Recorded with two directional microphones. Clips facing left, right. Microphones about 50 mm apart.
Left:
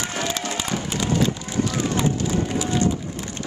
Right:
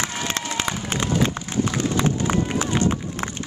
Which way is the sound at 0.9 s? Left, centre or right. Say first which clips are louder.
Even; right.